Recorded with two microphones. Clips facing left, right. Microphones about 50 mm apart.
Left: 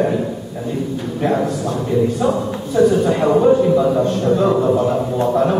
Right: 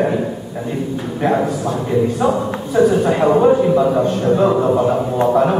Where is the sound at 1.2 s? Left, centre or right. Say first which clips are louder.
Right 1 dB; centre.